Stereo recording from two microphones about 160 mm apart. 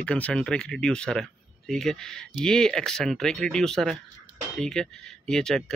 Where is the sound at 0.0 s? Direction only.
5° left (ahead or behind).